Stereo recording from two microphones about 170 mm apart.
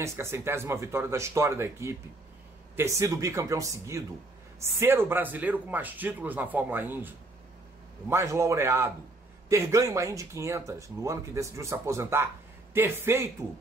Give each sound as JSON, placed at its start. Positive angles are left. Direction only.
{"t": 0.0, "sound": "speech", "side_deg": -15}